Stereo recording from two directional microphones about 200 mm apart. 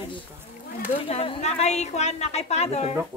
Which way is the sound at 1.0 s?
30° left (ahead or behind).